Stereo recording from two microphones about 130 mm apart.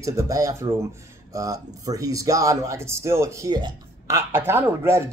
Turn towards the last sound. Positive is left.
turn(degrees=-20)  # may be behind; listen again after turning